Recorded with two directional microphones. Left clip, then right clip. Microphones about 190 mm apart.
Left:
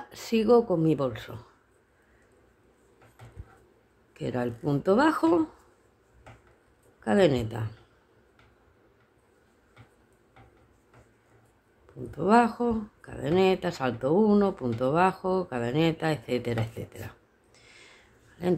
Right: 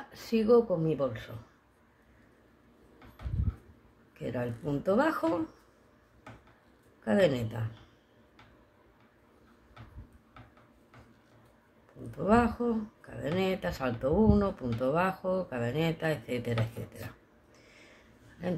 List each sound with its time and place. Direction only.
0.1 s speech: 30° left (ahead or behind)
4.2 s speech: 35° left (ahead or behind)
7.1 s speech: 30° left (ahead or behind)
12.2 s speech: 30° left (ahead or behind)